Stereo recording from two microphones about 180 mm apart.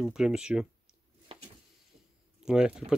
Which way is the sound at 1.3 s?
30° right (ahead or behind).